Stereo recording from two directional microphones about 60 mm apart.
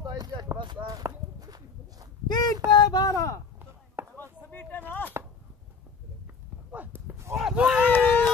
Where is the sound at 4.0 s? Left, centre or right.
Right.